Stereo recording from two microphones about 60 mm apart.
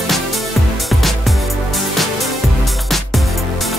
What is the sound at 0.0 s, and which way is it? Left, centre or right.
Music, centre.